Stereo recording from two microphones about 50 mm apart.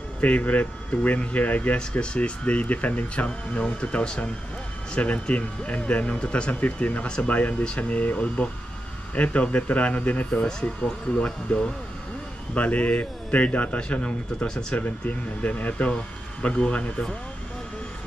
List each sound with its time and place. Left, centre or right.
0.2 s speech: left
14.8 s speech: left